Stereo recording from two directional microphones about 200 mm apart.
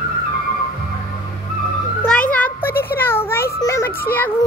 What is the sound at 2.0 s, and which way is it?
A child's voice, 5° left (ahead or behind).